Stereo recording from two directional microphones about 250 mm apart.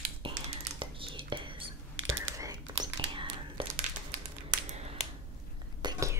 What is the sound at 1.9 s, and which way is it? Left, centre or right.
Computer keyboard, right.